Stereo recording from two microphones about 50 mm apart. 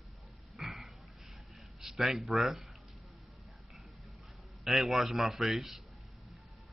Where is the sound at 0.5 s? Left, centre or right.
Centre.